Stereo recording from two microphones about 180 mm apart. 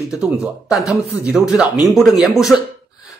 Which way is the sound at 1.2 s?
5° right (ahead or behind).